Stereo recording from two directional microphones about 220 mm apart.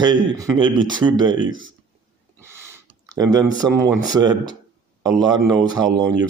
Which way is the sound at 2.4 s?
10° right (ahead or behind).